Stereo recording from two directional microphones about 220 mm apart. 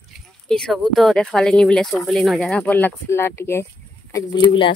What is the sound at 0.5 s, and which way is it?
Speech, centre (ahead or behind).